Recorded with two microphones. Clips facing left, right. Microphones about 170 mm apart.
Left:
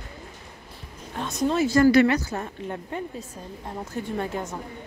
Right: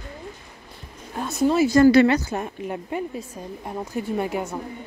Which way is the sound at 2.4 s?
10° right (ahead or behind).